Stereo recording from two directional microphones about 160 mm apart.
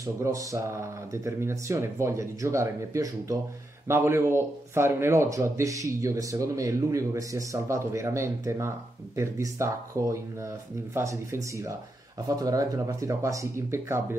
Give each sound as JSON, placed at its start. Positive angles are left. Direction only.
{"t": 0.0, "sound": "speech", "side_deg": -20}